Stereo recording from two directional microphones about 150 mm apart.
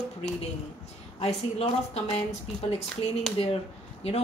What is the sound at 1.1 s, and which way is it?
Speech, 45° left (ahead or behind).